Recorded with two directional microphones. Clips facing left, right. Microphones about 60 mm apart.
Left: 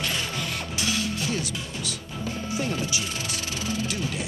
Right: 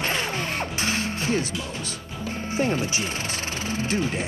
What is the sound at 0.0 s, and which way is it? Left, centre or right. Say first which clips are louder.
Music: right 3 dB; right.